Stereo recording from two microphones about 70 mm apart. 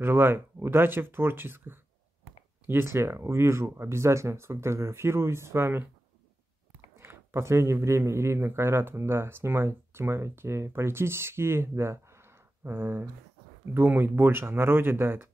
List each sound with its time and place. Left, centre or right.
0.0 s a man's voice: right
7.0 s a man's voice: right